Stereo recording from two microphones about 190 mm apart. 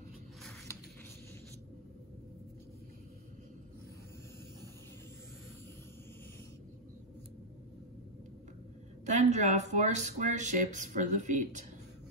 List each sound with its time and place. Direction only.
9.0 s speech: 35° right (ahead or behind)